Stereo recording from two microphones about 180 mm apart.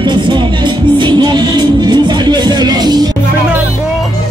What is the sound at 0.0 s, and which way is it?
Music, 25° right (ahead or behind).